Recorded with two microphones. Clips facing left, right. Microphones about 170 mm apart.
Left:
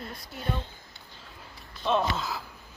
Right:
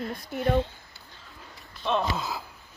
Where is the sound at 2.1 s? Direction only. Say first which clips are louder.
Right 1 dB; 20° right (ahead or behind).